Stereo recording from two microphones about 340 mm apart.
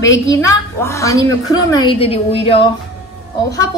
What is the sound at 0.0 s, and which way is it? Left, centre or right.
A woman's voice, centre.